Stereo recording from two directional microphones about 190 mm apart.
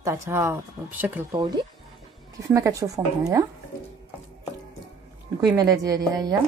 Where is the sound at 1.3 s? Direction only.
25° right (ahead or behind).